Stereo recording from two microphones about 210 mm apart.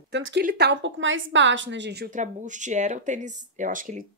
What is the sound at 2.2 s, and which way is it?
A woman's voice, 35° right (ahead or behind).